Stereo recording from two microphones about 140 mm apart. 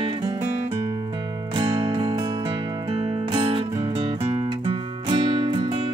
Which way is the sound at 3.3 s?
40° right (ahead or behind).